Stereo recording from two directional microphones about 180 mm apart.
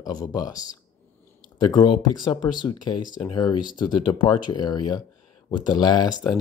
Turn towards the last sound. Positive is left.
turn(degrees=25)  # may be behind; listen again after turning